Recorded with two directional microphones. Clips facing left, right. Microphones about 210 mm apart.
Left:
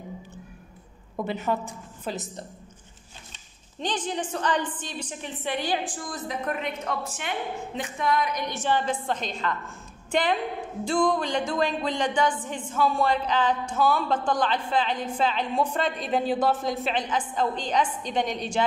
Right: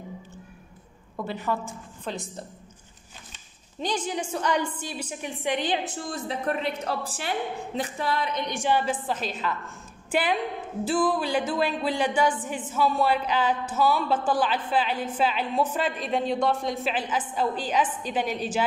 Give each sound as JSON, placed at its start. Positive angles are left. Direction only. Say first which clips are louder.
{"t": 1.1, "sound": "a woman's voice", "louder": "left 2 dB", "side_deg": 20}
{"t": 2.0, "sound": "a woman's voice", "louder": "left 1 dB", "side_deg": 0}
{"t": 3.8, "sound": "a woman's voice", "louder": "right 1 dB", "side_deg": -10}
{"t": 8.5, "sound": "a woman's voice", "louder": "right 1 dB", "side_deg": -10}